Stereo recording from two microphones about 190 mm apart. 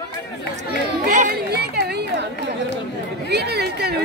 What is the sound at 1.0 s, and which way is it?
Chatter, 45° right (ahead or behind).